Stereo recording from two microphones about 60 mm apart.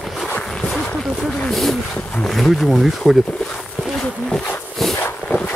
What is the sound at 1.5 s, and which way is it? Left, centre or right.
Speech, centre.